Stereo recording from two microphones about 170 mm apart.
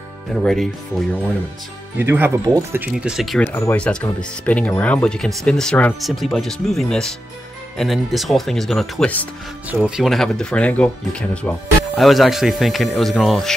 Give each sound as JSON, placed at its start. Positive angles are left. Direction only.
{"t": 0.4, "sound": "speech", "side_deg": 0}
{"t": 2.0, "sound": "speech", "side_deg": -15}
{"t": 2.9, "sound": "speech", "side_deg": -5}
{"t": 9.7, "sound": "speech", "side_deg": -5}